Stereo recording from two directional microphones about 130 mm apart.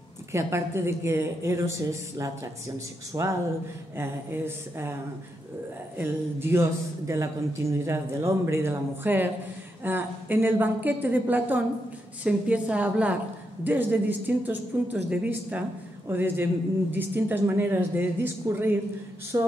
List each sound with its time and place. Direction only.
0.3 s a man's voice: 20° right (ahead or behind)
5.9 s a man's voice: 20° right (ahead or behind)